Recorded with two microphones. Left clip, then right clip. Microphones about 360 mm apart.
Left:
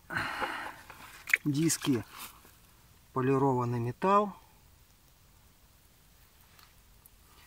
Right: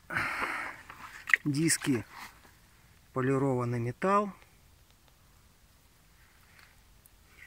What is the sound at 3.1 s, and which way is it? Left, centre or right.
Speech, centre.